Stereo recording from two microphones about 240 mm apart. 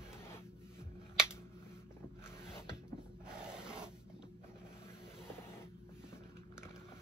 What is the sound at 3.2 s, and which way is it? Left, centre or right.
Rub, centre.